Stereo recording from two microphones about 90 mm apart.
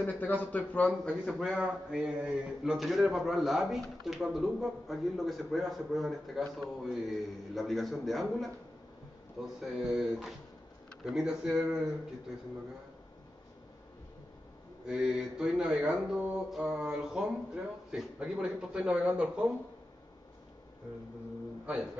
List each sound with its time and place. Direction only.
0.0 s a man's voice: 20° left (ahead or behind)
1.2 s a man's voice: 5° right (ahead or behind)
14.9 s speech: 10° right (ahead or behind)